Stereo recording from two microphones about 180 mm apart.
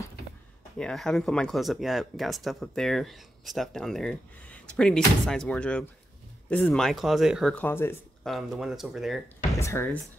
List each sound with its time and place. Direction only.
0.7 s speech: 5° left (ahead or behind)
7.5 s speech: 10° left (ahead or behind)
8.3 s speech: centre (ahead or behind)
9.6 s speech: 15° left (ahead or behind)